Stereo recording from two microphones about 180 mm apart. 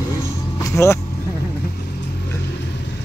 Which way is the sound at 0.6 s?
15° left (ahead or behind).